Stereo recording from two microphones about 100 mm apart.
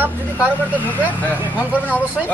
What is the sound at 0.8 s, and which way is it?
A man's voice, 15° left (ahead or behind).